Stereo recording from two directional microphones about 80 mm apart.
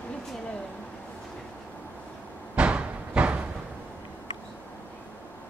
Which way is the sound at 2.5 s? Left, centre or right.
Centre.